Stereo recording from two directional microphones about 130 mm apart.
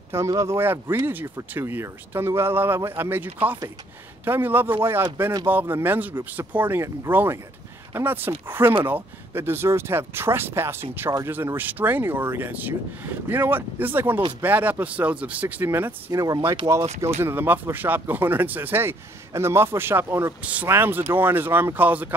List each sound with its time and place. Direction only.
0.3 s speech: 20° right (ahead or behind)